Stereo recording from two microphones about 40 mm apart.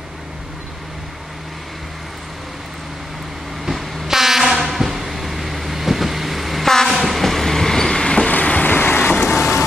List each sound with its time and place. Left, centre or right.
3.6 s train: centre
8.3 s vehicle: left
8.6 s vehicle: left
9.3 s vehicle: centre